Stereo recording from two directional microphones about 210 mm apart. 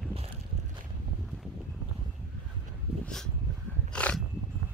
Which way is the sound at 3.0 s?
5° left (ahead or behind).